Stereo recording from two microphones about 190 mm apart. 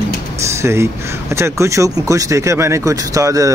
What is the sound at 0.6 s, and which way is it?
Speech, 15° right (ahead or behind).